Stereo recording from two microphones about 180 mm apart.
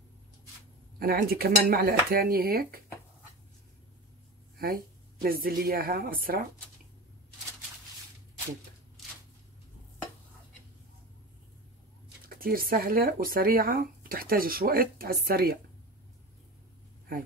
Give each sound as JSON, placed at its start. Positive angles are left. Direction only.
{"t": 0.9, "sound": "speech", "side_deg": -55}
{"t": 4.6, "sound": "speech", "side_deg": -55}
{"t": 12.4, "sound": "speech", "side_deg": -55}